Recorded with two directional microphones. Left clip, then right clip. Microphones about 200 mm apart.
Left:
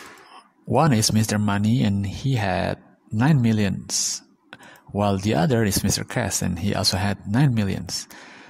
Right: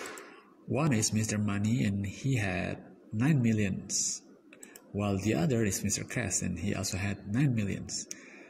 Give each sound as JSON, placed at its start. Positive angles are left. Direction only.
{"t": 0.7, "sound": "speech", "side_deg": 40}